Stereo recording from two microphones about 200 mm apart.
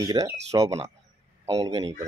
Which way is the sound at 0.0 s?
15° right (ahead or behind).